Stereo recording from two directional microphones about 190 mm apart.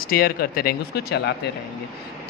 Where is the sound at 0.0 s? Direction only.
50° left (ahead or behind).